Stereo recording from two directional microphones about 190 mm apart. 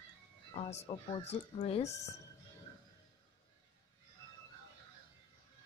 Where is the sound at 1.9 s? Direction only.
15° left (ahead or behind).